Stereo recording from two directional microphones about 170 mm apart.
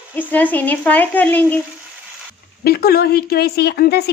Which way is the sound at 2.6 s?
65° left (ahead or behind).